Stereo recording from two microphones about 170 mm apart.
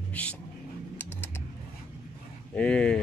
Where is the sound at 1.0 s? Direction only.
15° left (ahead or behind).